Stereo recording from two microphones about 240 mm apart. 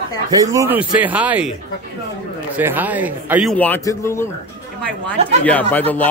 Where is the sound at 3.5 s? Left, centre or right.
Centre.